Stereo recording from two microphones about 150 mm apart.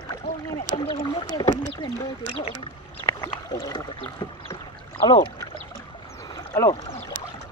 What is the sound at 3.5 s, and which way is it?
Rowboat, 25° left (ahead or behind).